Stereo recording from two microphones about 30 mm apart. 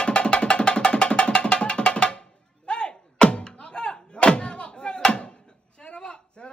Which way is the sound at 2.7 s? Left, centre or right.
Left.